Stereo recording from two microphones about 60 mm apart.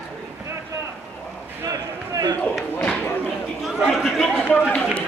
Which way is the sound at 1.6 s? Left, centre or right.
Right.